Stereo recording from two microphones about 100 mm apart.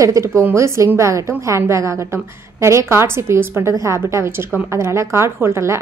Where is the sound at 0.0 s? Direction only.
30° right (ahead or behind).